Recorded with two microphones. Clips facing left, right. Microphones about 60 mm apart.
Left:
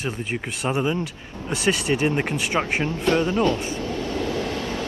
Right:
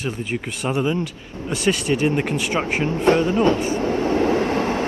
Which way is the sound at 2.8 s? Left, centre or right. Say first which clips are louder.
Right 8 dB; right.